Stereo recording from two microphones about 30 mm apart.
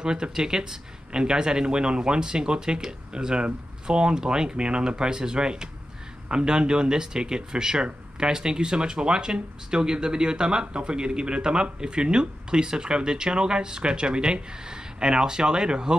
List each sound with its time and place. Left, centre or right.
0.0 s speech: right